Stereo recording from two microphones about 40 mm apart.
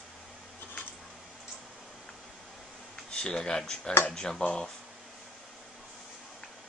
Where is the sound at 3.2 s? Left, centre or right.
Centre.